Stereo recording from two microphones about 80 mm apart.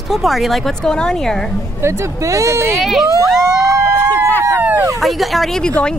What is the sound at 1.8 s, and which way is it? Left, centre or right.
Speech, right.